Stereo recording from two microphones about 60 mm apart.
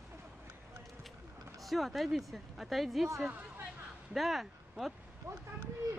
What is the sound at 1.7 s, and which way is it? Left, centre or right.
Speech, centre.